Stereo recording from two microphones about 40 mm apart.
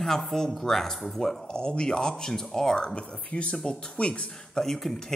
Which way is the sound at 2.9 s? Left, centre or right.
Left.